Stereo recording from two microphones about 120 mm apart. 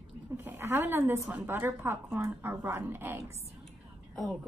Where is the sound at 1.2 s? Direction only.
15° right (ahead or behind).